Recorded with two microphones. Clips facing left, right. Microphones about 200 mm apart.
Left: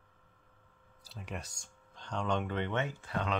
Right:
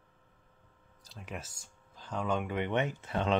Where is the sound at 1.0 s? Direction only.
Centre (ahead or behind).